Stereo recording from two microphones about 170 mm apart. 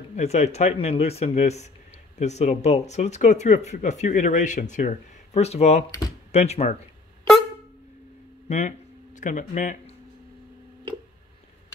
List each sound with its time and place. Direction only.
0.1 s speech: 40° left (ahead or behind)
8.5 s speech: 45° left (ahead or behind)